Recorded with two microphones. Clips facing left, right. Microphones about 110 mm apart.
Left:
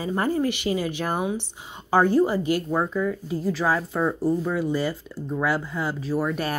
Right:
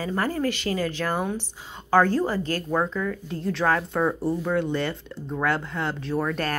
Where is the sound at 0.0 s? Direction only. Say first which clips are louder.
Left 2 dB; 20° left (ahead or behind).